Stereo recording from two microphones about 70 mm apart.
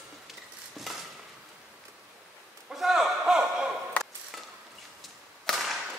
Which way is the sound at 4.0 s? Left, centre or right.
Left.